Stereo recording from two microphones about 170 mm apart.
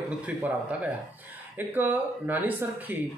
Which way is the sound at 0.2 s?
10° right (ahead or behind).